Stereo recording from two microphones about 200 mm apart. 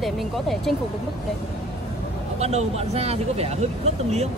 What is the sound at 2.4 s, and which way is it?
Speech, 30° right (ahead or behind).